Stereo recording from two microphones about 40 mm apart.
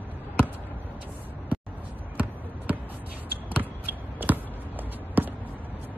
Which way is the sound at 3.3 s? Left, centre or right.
Right.